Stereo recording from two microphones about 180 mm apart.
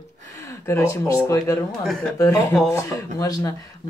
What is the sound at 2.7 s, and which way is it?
Speech, 15° left (ahead or behind).